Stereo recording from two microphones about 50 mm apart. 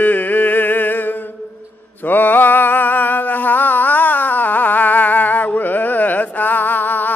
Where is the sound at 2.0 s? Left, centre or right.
Left.